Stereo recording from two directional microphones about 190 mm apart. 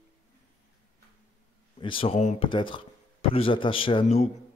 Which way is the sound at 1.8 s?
30° left (ahead or behind).